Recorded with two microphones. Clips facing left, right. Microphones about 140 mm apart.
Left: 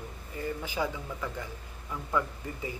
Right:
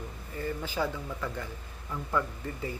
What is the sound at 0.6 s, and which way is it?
Speech, 10° left (ahead or behind).